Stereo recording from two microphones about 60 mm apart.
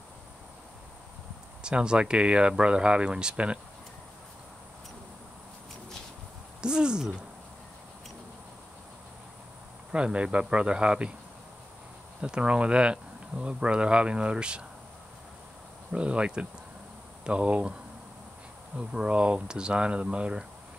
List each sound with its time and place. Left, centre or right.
1.6 s speech: centre
6.6 s speech: centre
9.9 s speech: centre
12.2 s speech: centre
15.9 s speech: centre
18.8 s speech: centre